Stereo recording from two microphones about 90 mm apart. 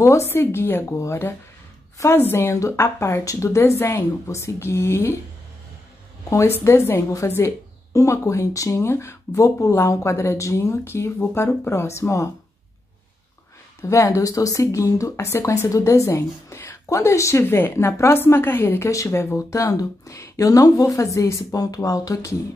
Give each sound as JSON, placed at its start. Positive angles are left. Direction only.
{"t": 0.0, "sound": "a woman's voice", "side_deg": 30}
{"t": 6.6, "sound": "a woman's voice", "side_deg": 30}
{"t": 13.8, "sound": "a woman's voice", "side_deg": 35}
{"t": 19.1, "sound": "a woman's voice", "side_deg": 35}